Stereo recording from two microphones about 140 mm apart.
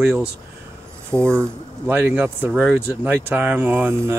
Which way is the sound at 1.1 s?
10° left (ahead or behind).